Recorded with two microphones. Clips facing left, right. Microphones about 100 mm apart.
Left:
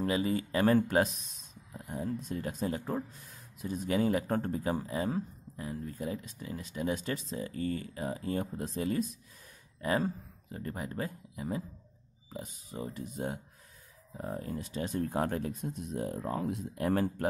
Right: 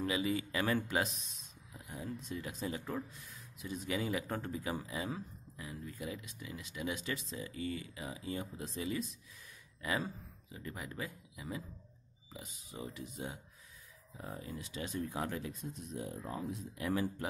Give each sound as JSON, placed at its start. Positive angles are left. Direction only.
{"t": 0.0, "sound": "speech", "side_deg": 40}
{"t": 9.8, "sound": "speech", "side_deg": 40}
{"t": 14.1, "sound": "speech", "side_deg": 35}